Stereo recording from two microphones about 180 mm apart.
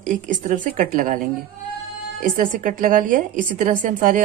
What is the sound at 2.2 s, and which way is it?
A woman's voice, 50° right (ahead or behind).